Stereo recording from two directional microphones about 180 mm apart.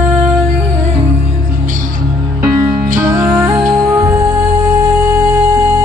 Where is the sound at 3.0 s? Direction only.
10° right (ahead or behind).